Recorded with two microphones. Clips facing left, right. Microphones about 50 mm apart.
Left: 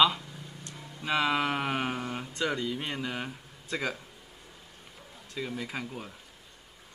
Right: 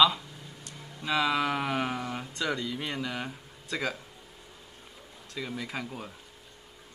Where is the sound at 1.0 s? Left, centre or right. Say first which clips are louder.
Even; left.